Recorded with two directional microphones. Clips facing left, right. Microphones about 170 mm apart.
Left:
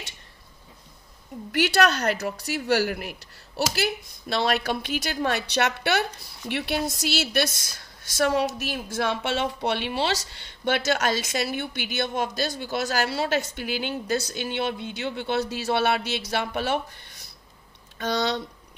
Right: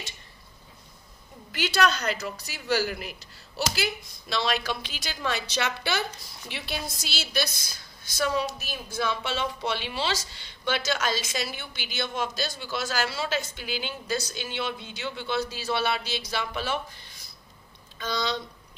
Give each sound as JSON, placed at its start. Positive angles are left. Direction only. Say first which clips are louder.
{"t": 1.5, "sound": "a woman's voice", "louder": "left 4 dB", "side_deg": 65}